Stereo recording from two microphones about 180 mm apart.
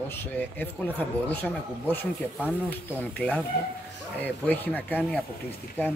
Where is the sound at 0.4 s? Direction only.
10° left (ahead or behind).